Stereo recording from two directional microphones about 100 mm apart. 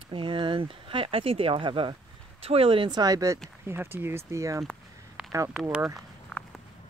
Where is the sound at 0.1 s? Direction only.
60° right (ahead or behind).